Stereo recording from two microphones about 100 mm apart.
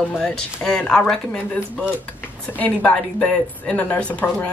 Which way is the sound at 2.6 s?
15° left (ahead or behind).